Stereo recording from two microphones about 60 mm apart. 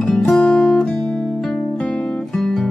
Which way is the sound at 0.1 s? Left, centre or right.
Centre.